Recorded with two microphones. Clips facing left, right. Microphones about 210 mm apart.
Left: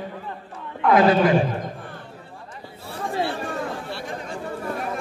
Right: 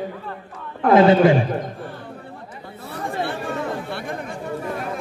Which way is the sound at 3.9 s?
55° right (ahead or behind).